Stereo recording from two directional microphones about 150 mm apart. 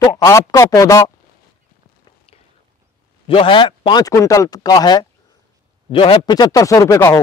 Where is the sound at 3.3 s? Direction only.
35° left (ahead or behind).